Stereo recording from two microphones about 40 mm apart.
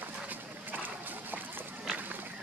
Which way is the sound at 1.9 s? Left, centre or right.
Right.